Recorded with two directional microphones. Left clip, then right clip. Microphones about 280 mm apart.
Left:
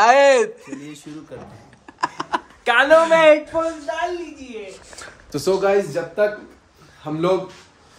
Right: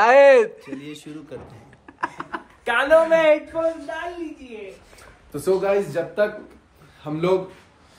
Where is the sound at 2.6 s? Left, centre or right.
Left.